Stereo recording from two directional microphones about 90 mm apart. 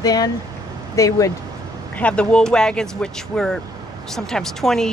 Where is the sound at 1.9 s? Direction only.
15° left (ahead or behind).